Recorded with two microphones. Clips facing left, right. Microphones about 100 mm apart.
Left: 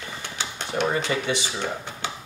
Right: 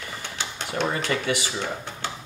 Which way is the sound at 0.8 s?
15° left (ahead or behind).